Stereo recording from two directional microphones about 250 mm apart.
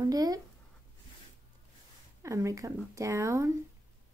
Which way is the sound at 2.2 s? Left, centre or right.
Centre.